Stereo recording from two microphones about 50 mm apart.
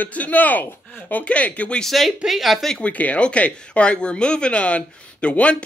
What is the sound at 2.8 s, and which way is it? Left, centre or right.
Speech, left.